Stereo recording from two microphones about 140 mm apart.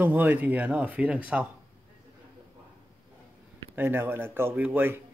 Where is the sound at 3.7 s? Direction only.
15° right (ahead or behind).